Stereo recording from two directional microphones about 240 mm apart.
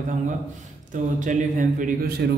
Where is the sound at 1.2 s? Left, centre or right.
Right.